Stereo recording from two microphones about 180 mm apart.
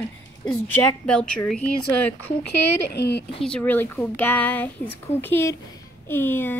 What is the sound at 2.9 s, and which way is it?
Speech, 70° left (ahead or behind).